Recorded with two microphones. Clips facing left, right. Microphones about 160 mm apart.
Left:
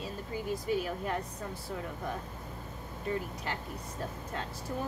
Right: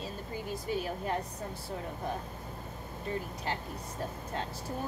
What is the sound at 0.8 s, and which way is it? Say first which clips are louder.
Speech: even; 30° right (ahead or behind).